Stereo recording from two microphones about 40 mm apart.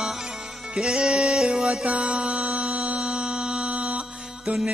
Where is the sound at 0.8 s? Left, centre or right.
Right.